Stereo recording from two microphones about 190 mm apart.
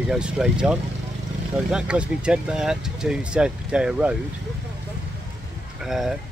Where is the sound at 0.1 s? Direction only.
5° right (ahead or behind).